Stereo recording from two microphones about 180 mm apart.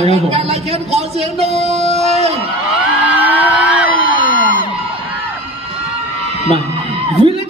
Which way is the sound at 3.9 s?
90° right.